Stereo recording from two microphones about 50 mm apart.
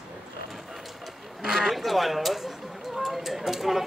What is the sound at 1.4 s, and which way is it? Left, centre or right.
A man's voice, centre.